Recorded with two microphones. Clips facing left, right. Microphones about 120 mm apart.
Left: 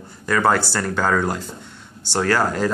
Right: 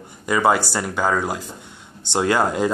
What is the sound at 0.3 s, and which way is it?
A man's voice, 15° right (ahead or behind).